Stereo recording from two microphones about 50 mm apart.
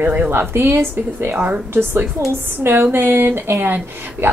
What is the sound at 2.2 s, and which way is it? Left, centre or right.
Speech, right.